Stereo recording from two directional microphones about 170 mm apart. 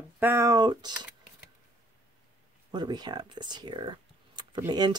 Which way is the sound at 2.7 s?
25° right (ahead or behind).